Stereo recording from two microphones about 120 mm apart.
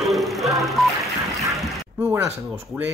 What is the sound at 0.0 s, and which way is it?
Music, centre (ahead or behind).